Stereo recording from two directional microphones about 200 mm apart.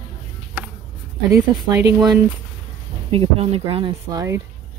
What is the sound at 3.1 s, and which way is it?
Speech, 30° right (ahead or behind).